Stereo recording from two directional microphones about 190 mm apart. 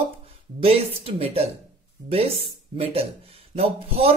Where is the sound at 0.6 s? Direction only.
30° right (ahead or behind).